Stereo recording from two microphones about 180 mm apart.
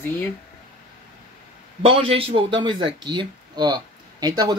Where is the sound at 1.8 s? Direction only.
30° right (ahead or behind).